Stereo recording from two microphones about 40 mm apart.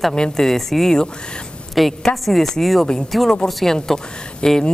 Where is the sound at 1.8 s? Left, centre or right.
Centre.